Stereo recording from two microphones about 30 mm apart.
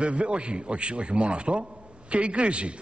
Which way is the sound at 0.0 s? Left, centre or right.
Right.